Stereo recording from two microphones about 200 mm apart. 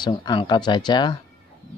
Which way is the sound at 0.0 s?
20° left (ahead or behind).